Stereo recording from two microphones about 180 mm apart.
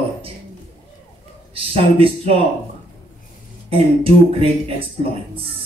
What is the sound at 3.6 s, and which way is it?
Speech, 30° right (ahead or behind).